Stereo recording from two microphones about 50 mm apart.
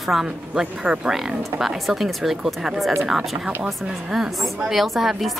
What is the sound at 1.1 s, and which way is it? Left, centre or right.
A woman's voice, centre.